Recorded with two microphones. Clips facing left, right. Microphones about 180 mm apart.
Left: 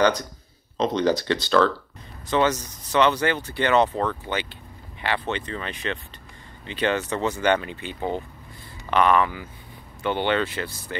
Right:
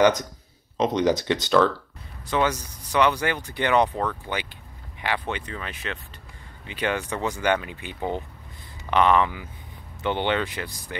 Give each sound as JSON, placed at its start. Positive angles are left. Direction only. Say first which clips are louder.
{"t": 0.7, "sound": "speech", "louder": "even", "side_deg": -15}